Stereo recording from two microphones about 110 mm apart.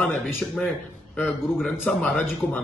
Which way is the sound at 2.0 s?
15° left (ahead or behind).